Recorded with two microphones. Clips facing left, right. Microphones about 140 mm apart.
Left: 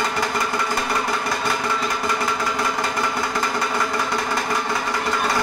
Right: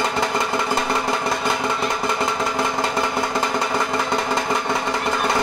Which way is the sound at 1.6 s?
25° right (ahead or behind).